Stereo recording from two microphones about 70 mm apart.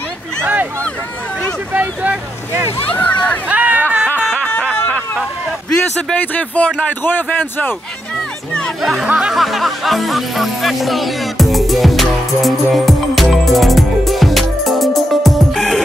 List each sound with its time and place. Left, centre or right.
1.7 s speech: right
2.9 s speech: left
3.4 s a sound: right
6.1 s speech: left
9.0 s speech: centre
9.3 s music: centre